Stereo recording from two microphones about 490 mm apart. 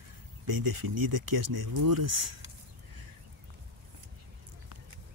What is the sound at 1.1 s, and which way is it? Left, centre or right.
Speech, right.